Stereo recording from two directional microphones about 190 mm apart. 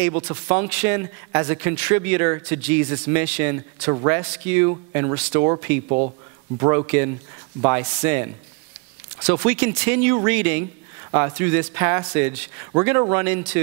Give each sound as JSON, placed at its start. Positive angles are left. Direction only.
{"t": 0.3, "sound": "speech", "side_deg": -15}
{"t": 5.9, "sound": "speech", "side_deg": -35}
{"t": 6.6, "sound": "speech", "side_deg": -25}
{"t": 7.7, "sound": "speech", "side_deg": -15}
{"t": 9.3, "sound": "speech", "side_deg": -10}